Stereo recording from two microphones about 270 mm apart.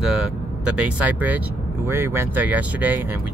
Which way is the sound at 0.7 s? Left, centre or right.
Centre.